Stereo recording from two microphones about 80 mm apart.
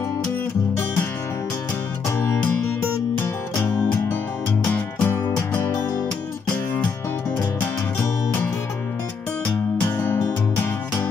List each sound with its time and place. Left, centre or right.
5.0 s music: left
8.0 s music: left
9.9 s music: left